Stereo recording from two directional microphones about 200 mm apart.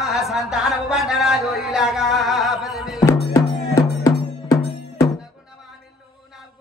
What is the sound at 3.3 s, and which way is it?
Cowbell, 15° left (ahead or behind).